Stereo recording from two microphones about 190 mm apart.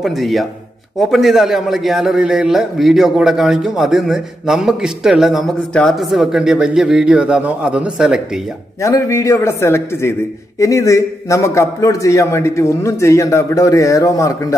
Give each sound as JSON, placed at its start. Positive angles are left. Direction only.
{"t": 0.0, "sound": "a man's voice", "side_deg": 0}
{"t": 8.8, "sound": "a man's voice", "side_deg": 15}